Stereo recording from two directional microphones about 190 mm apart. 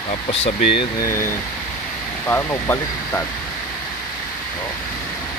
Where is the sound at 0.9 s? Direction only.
15° left (ahead or behind).